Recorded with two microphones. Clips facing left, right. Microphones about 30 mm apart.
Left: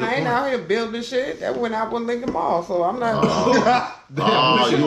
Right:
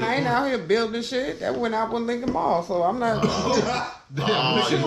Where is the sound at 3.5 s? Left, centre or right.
Left.